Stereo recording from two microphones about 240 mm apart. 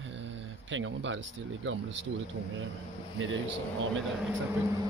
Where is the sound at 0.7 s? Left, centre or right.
Right.